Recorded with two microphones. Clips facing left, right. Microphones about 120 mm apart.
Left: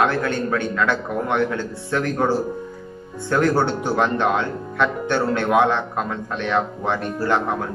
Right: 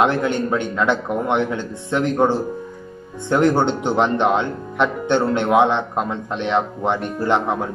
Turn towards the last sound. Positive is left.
turn(degrees=-20)  # may be behind; listen again after turning